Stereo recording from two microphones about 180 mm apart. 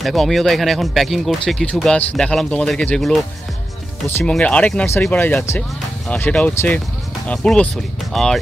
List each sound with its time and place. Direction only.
0.0 s speech: centre (ahead or behind)
4.2 s speech: 5° left (ahead or behind)